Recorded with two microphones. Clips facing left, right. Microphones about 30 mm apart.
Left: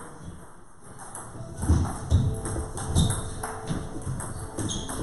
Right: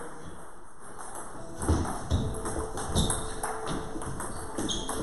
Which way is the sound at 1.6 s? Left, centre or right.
Centre.